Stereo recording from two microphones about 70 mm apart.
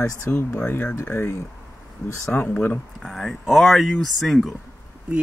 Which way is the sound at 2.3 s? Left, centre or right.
Left.